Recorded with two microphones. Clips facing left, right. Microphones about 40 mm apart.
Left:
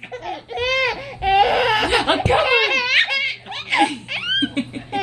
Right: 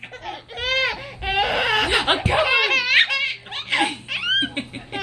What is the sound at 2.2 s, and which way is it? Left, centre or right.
Laughter, centre.